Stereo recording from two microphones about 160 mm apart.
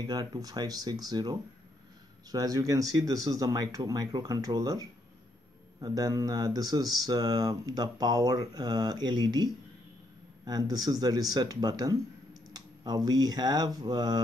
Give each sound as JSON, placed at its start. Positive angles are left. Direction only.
{"t": 0.0, "sound": "speech", "side_deg": -25}